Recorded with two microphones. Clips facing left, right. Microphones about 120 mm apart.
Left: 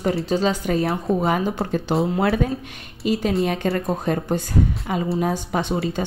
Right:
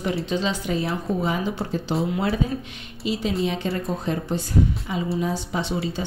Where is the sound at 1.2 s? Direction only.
55° left (ahead or behind).